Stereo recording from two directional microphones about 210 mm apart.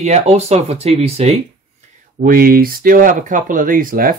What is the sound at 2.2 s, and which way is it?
Speech, 45° right (ahead or behind).